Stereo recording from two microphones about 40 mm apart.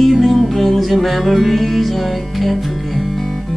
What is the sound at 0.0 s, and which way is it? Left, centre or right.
Music, centre.